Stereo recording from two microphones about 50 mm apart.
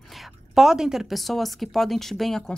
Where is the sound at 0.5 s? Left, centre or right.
Centre.